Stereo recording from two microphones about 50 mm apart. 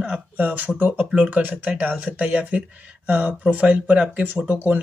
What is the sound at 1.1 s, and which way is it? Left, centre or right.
Speech, right.